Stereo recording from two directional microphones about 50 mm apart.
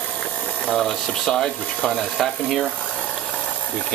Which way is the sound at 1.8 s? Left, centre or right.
Centre.